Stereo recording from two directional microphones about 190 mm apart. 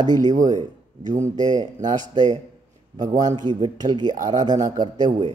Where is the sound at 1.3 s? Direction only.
20° right (ahead or behind).